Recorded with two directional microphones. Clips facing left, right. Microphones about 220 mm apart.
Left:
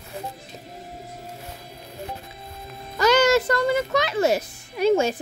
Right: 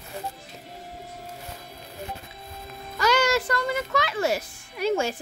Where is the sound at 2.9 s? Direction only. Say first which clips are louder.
Left 5 dB; 20° left (ahead or behind).